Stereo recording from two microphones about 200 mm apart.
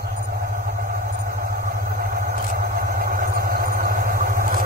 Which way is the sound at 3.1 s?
45° right (ahead or behind).